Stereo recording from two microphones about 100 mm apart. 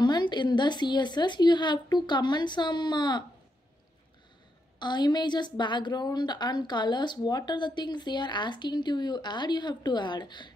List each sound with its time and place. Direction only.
0.0 s a woman's voice: 45° left (ahead or behind)
4.7 s a woman's voice: 50° left (ahead or behind)